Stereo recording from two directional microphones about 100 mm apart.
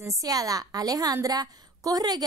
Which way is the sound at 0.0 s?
35° right (ahead or behind).